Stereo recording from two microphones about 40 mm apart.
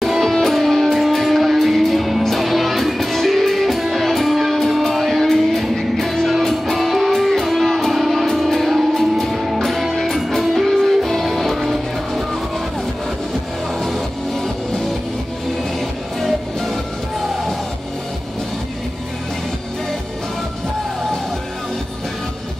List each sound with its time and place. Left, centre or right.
0.2 s music: centre
13.8 s music: centre
16.2 s music: centre